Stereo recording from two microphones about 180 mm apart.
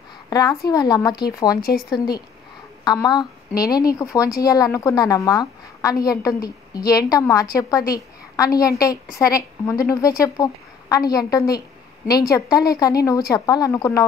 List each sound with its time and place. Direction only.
0.3 s a woman's voice: 20° left (ahead or behind)
2.8 s a woman's voice: 20° left (ahead or behind)